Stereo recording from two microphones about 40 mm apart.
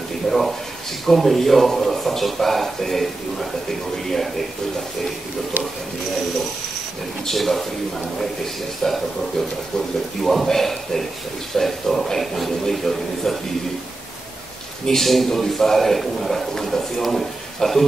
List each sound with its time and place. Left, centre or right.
0.3 s a man's voice: centre
7.2 s a man's voice: centre
8.8 s a man's voice: centre
10.2 s a man's voice: centre
14.9 s a man's voice: centre